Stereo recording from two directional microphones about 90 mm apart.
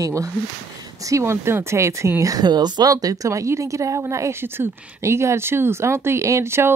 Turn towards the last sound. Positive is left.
turn(degrees=-30)  # may be behind; listen again after turning